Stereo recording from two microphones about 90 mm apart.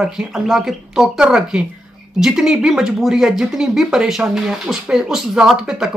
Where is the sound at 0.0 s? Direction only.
5° right (ahead or behind).